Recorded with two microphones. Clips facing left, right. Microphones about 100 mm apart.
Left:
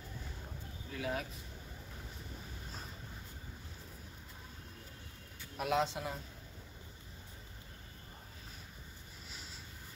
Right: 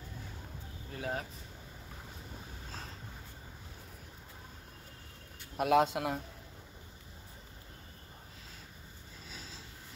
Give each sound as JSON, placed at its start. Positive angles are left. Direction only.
{"t": 0.9, "sound": "speech", "side_deg": -35}
{"t": 5.6, "sound": "a man's voice", "side_deg": -60}